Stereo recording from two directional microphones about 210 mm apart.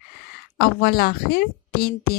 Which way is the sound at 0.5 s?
45° left (ahead or behind).